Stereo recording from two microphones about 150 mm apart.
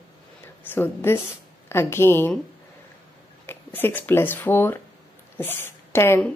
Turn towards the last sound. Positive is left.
turn(degrees=15)  # may be behind; listen again after turning